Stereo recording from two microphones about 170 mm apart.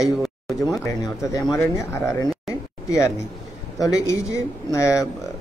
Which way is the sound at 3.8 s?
20° left (ahead or behind).